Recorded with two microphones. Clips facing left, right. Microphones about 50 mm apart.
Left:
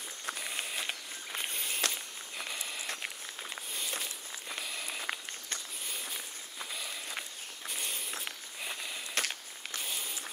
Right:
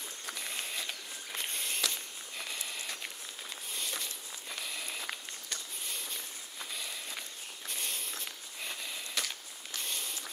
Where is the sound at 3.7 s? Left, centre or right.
Centre.